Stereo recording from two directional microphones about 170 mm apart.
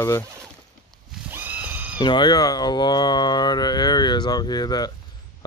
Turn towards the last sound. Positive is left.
turn(degrees=25)  # may be behind; listen again after turning